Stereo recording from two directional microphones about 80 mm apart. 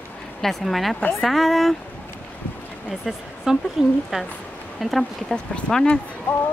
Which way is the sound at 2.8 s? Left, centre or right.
Centre.